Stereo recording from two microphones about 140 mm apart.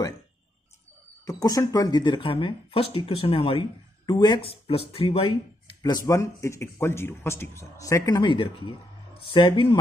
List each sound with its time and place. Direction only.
1.2 s speech: 25° left (ahead or behind); by 5.4 s 40° left (ahead or behind)
5.8 s speech: 25° left (ahead or behind)